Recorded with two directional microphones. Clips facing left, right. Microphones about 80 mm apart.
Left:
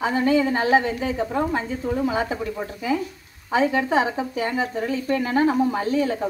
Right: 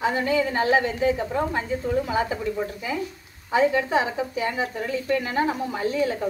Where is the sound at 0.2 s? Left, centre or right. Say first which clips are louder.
Left 3 dB; left.